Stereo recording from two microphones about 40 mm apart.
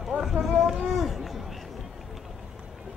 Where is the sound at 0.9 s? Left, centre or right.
Centre.